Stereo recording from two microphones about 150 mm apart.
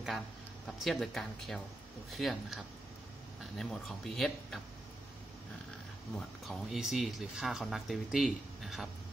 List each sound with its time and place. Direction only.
0.7 s speech: centre (ahead or behind)
6.1 s speech: centre (ahead or behind)